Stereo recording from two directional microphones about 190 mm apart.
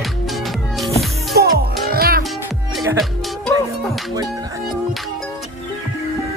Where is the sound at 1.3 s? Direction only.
55° right (ahead or behind).